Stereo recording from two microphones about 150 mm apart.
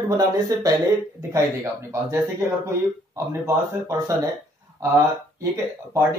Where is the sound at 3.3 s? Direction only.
20° right (ahead or behind).